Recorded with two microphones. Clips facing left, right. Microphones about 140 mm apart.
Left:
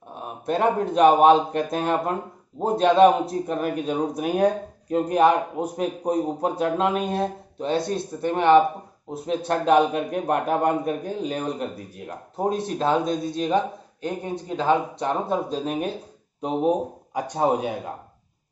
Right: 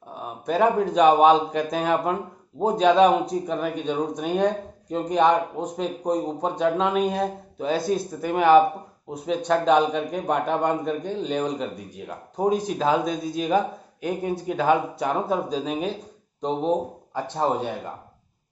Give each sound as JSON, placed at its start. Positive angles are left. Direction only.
{"t": 0.1, "sound": "a sound", "side_deg": 0}
{"t": 0.9, "sound": "a man's voice", "side_deg": 0}
{"t": 14.0, "sound": "speech", "side_deg": 20}
{"t": 15.2, "sound": "a man's voice", "side_deg": 0}